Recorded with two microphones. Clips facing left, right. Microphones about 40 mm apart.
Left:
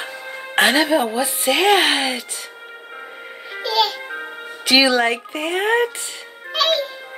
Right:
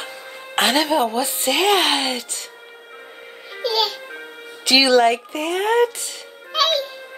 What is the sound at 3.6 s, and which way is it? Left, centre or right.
Music, centre.